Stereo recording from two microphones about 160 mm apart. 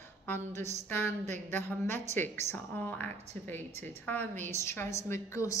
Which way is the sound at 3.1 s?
40° right (ahead or behind).